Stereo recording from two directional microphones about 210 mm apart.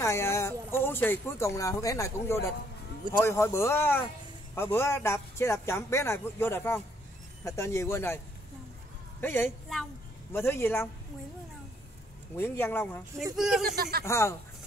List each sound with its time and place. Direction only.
0.0 s speech: 15° left (ahead or behind)
9.2 s speech: 10° left (ahead or behind)
12.4 s speech: 10° left (ahead or behind)
13.4 s speech: centre (ahead or behind)
13.7 s speech: 45° right (ahead or behind)
14.0 s speech: 15° left (ahead or behind)